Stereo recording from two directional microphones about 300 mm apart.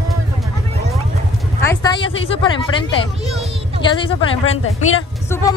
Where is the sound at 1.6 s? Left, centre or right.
Centre.